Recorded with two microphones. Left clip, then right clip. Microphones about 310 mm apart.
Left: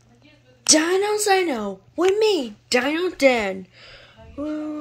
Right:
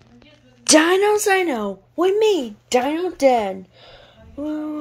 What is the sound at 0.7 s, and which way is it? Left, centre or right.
A woman's voice, centre.